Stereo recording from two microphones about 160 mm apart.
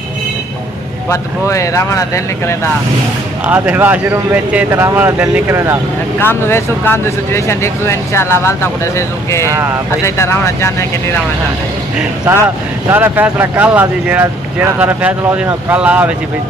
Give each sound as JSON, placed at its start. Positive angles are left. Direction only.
{"t": 1.1, "sound": "speech", "side_deg": 20}
{"t": 3.4, "sound": "speech", "side_deg": -10}
{"t": 6.1, "sound": "speech", "side_deg": 15}
{"t": 12.9, "sound": "speech", "side_deg": -10}